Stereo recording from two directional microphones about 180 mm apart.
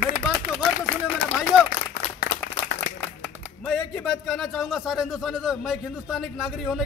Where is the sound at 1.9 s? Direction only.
50° left (ahead or behind).